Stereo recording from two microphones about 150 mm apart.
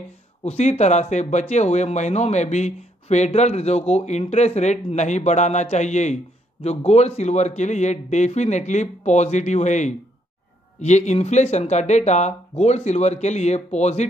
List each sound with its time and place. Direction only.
0.4 s speech: 50° left (ahead or behind)